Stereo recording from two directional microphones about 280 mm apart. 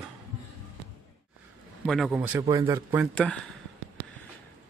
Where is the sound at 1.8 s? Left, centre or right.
Centre.